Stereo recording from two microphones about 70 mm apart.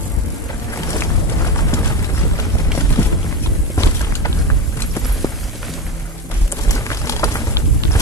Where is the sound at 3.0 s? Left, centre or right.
Left.